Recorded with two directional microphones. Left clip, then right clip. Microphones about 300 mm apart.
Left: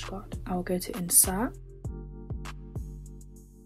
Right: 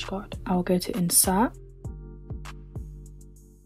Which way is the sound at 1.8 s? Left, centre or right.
Centre.